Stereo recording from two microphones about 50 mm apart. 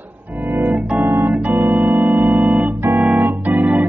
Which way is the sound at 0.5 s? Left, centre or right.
Right.